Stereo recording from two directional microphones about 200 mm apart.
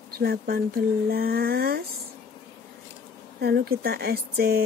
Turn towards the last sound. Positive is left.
turn(degrees=-50)  # may be behind; listen again after turning